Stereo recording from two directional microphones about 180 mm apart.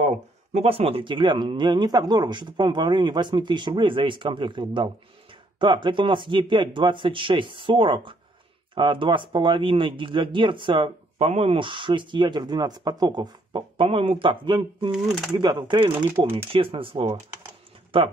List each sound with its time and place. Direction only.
0.0 s speech: 40° right (ahead or behind)
14.9 s speech: 5° right (ahead or behind)
15.3 s speech: 25° right (ahead or behind)
16.1 s speech: 15° right (ahead or behind)
16.5 s speech: 30° right (ahead or behind)